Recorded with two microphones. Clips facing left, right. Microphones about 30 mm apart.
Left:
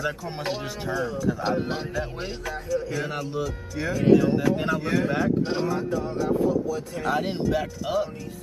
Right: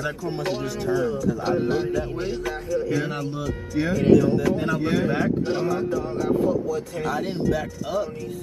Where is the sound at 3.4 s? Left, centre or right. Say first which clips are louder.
Right 4 dB; centre.